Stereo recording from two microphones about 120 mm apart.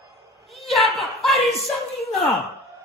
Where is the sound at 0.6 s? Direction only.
Centre (ahead or behind).